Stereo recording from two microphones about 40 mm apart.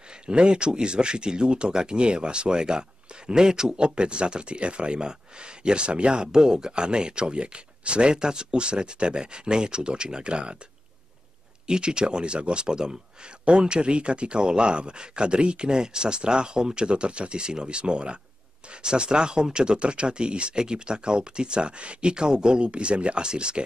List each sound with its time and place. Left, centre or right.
0.3 s speech: right
11.6 s speech: right